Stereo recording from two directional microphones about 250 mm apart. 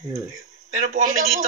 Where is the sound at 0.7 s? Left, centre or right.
Right.